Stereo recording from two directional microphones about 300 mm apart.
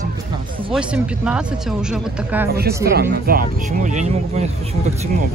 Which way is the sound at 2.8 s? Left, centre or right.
Right.